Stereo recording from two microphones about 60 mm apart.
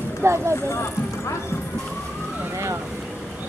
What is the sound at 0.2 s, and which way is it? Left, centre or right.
Speech, right.